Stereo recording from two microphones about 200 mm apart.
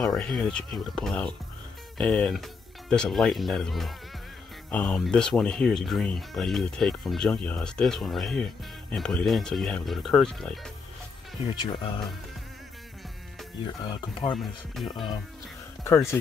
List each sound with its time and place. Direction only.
0.0 s speech: centre (ahead or behind)
11.4 s speech: 25° left (ahead or behind)
14.3 s speech: centre (ahead or behind)
15.8 s speech: 15° left (ahead or behind)